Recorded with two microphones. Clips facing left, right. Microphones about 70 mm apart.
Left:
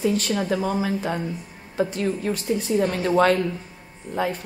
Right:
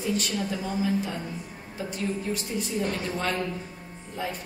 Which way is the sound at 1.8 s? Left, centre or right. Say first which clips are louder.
Left 7 dB; left.